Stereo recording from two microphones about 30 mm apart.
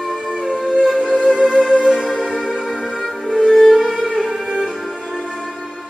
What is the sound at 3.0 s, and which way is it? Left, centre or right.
Music, centre.